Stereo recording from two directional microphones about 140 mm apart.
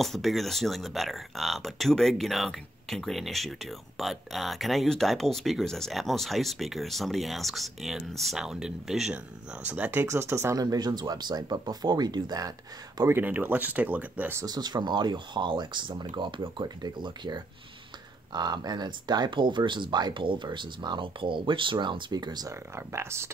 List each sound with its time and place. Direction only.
0.0 s speech: centre (ahead or behind); by 13.1 s 25° right (ahead or behind)
13.1 s speech: 15° right (ahead or behind)
14.4 s speech: 30° right (ahead or behind)